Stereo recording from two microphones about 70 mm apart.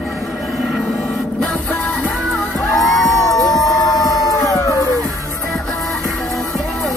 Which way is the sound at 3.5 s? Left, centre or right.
Left.